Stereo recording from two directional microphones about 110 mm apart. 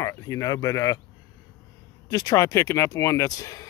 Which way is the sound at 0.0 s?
30° left (ahead or behind).